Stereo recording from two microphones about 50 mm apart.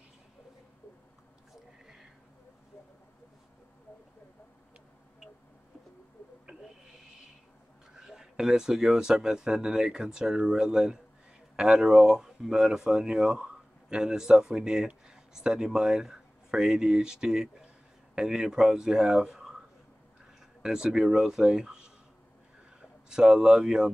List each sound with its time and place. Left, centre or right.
7.9 s speech: centre
20.6 s speech: centre